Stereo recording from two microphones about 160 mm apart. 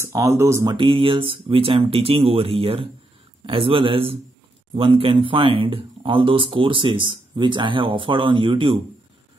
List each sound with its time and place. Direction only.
0.0 s speech: 20° right (ahead or behind)
0.7 s speech: 35° right (ahead or behind)